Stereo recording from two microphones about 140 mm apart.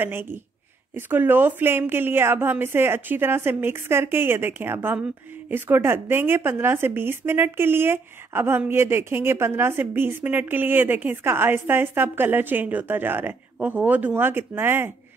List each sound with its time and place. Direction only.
0.0 s speech: 15° right (ahead or behind)